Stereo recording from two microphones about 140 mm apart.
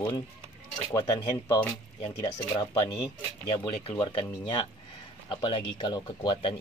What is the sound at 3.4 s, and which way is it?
Speech, 30° left (ahead or behind).